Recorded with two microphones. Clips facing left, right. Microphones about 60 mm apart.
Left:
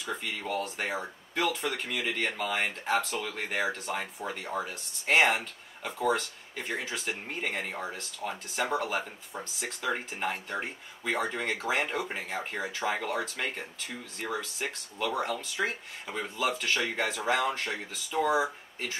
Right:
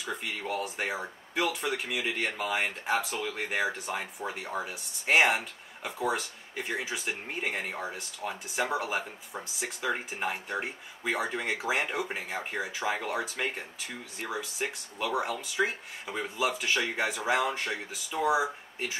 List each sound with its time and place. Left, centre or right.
0.2 s speech: centre